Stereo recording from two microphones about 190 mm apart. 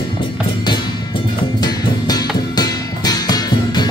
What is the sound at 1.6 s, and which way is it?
Music, 20° left (ahead or behind).